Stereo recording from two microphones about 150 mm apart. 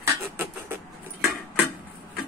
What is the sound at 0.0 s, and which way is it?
Beatboxing, 15° right (ahead or behind).